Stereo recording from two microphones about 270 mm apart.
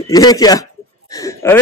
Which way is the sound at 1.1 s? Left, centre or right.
Centre.